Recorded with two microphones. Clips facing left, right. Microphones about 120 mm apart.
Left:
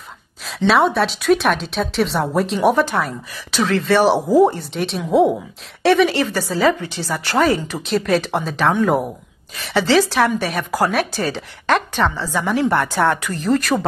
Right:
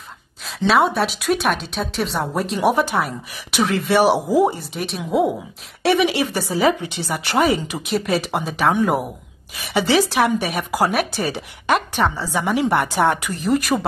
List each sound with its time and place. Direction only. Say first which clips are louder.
0.6 s speech: left 2 dB; centre (ahead or behind)
3.5 s a woman's voice: left 1 dB; 15° right (ahead or behind)
9.6 s a woman's voice: left 2 dB; 15° right (ahead or behind)